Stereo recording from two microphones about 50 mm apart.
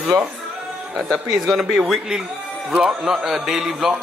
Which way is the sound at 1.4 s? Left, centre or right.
Centre.